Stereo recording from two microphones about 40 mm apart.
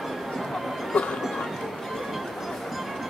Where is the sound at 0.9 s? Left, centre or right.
Left.